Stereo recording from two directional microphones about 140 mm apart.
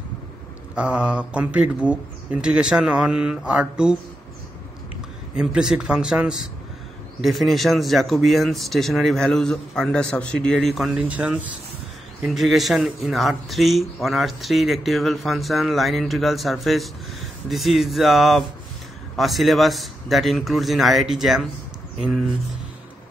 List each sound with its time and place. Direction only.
0.7 s speech: 10° right (ahead or behind)
5.3 s speech: 5° right (ahead or behind)